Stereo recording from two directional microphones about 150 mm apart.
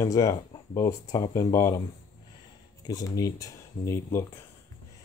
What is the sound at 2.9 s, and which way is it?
Speech, 25° left (ahead or behind).